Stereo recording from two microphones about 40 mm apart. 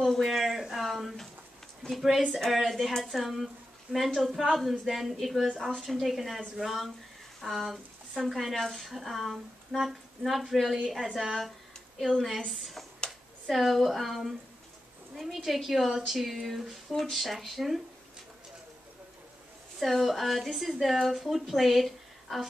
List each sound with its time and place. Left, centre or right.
0.0 s a sound: centre
1.9 s a woman's voice: centre
19.8 s a woman's voice: centre